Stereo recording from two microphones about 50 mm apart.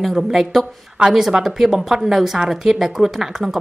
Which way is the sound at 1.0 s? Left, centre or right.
Centre.